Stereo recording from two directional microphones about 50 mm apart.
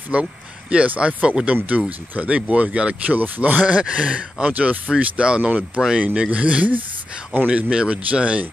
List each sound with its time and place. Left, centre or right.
0.1 s speech: right
6.3 s speech: right